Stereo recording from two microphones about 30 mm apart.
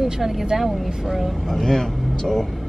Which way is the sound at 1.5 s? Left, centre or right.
Centre.